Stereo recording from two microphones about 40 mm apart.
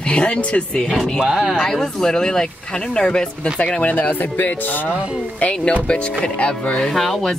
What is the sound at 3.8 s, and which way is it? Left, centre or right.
Speech, left.